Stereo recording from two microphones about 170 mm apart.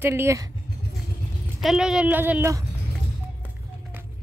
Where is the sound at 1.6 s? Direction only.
Centre (ahead or behind).